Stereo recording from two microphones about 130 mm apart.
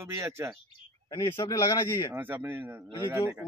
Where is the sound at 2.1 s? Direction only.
15° right (ahead or behind).